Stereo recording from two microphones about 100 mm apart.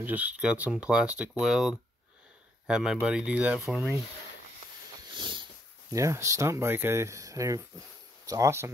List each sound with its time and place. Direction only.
0.0 s speech: 15° right (ahead or behind)
5.1 s dog: 55° right (ahead or behind)
5.9 s speech: 30° right (ahead or behind)